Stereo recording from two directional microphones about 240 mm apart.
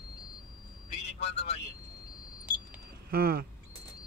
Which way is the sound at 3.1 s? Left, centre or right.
Right.